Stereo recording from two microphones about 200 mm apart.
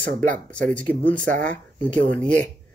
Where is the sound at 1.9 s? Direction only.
5° left (ahead or behind).